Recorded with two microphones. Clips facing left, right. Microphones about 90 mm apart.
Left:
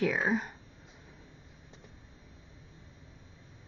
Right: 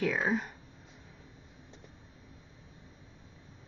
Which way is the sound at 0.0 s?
5° left (ahead or behind).